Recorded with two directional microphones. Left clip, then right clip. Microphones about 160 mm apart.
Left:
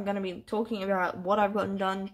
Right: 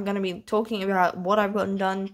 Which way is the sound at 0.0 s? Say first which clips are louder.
Right 4 dB; 50° right (ahead or behind).